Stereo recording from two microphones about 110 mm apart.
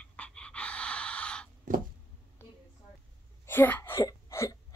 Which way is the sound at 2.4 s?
20° left (ahead or behind).